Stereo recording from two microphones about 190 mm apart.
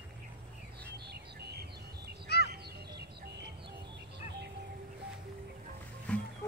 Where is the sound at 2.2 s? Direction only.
60° left (ahead or behind).